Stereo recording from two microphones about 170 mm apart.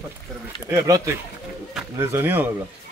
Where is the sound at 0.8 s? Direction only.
20° right (ahead or behind).